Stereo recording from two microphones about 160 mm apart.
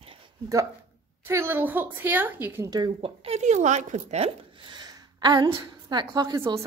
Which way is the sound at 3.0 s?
40° right (ahead or behind).